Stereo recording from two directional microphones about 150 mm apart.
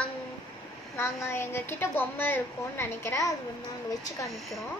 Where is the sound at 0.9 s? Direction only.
15° left (ahead or behind).